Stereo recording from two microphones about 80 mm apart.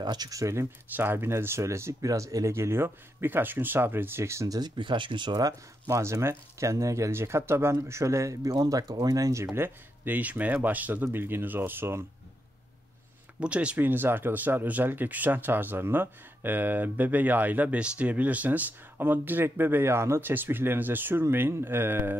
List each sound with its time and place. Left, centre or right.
0.0 s speech: right
0.9 s speech: right
4.6 s speech: right
5.9 s speech: right
13.4 s speech: centre